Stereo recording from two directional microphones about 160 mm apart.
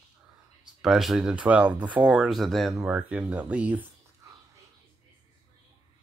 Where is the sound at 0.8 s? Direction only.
Centre (ahead or behind).